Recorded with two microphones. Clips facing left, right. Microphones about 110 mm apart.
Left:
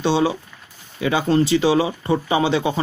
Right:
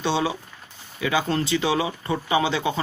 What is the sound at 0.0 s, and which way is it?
Speech, 25° left (ahead or behind).